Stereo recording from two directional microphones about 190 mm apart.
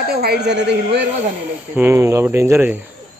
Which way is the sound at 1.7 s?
10° right (ahead or behind).